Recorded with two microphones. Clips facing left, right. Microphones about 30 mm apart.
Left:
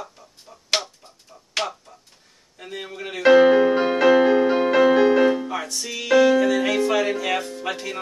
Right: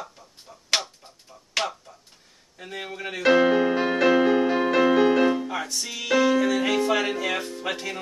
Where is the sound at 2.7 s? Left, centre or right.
Centre.